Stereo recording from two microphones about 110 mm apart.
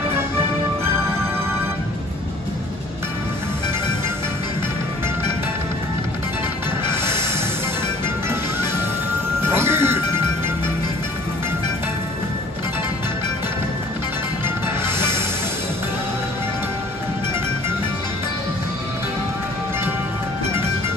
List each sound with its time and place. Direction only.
6.9 s music: 20° right (ahead or behind)
9.4 s music: 20° right (ahead or behind)
14.4 s music: 20° right (ahead or behind)